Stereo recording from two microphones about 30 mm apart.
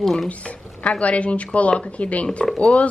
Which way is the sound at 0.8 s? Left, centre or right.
Left.